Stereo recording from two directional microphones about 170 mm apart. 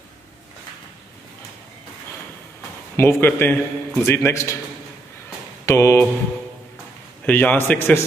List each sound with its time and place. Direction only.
3.0 s a man's voice: 15° left (ahead or behind)
5.7 s a man's voice: 15° left (ahead or behind)
7.2 s a man's voice: 10° left (ahead or behind)